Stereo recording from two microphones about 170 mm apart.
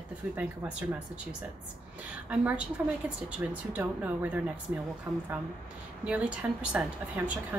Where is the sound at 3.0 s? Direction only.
10° right (ahead or behind).